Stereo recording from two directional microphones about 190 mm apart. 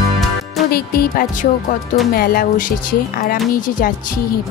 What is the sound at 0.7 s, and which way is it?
Speech, 50° left (ahead or behind).